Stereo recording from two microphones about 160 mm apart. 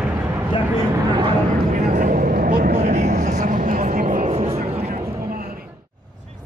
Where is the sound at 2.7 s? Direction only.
50° right (ahead or behind).